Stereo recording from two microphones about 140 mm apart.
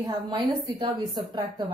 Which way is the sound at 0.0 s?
30° right (ahead or behind).